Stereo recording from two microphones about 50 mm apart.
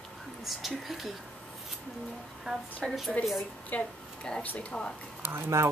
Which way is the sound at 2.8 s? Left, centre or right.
Centre.